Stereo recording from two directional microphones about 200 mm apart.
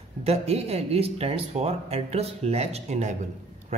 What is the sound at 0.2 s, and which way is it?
Speech, 30° right (ahead or behind).